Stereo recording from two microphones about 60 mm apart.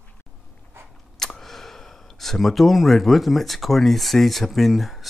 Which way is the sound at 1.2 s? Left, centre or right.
Centre.